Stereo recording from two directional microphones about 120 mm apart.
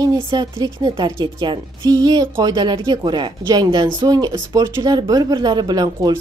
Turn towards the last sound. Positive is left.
turn(degrees=-35)  # may be behind; listen again after turning